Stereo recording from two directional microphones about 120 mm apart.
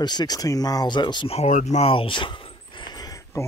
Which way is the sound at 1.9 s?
45° left (ahead or behind).